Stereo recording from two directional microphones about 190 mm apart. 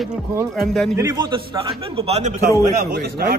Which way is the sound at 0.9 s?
20° right (ahead or behind).